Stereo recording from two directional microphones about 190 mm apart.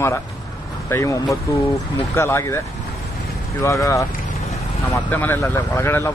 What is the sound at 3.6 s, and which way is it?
Speech, 15° left (ahead or behind).